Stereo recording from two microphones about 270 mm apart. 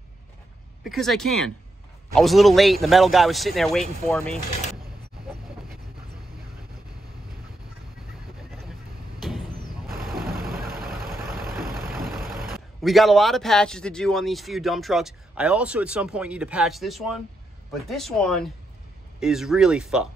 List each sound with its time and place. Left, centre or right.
0.8 s speech: centre
10.0 s vehicle: right
11.9 s vehicle: centre
12.8 s speech: centre